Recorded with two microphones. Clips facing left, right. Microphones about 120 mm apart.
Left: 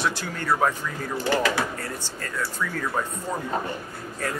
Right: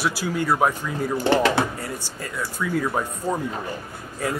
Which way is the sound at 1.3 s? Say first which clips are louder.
Right 4 dB; 25° right (ahead or behind).